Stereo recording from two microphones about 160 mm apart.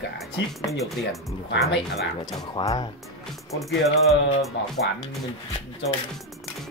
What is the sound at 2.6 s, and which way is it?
Speech, 30° left (ahead or behind).